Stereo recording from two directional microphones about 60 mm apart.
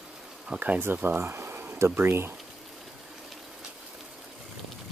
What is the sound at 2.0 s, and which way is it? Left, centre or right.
Speech, right.